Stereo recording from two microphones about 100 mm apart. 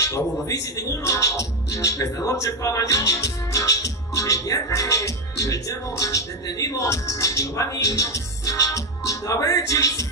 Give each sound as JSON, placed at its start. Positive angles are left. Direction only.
{"t": 0.0, "sound": "speech", "side_deg": 35}